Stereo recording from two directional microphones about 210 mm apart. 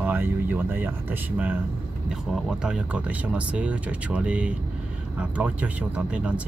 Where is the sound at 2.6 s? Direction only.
5° right (ahead or behind).